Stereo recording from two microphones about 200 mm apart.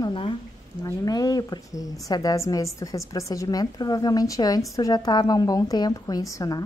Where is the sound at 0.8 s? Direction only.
20° left (ahead or behind).